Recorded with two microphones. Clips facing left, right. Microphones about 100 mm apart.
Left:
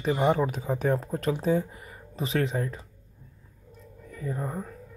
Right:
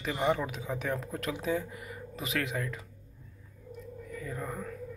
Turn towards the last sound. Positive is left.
turn(degrees=30)  # may be behind; listen again after turning